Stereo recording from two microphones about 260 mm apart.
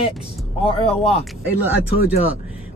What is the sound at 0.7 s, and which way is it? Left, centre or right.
Speech, left.